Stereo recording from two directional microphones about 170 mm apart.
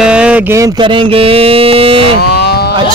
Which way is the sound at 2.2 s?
70° left (ahead or behind).